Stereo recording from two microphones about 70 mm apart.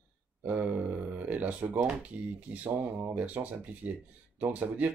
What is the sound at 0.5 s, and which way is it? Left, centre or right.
Speech, right.